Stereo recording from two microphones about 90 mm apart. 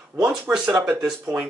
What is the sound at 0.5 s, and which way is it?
Speech, 10° right (ahead or behind).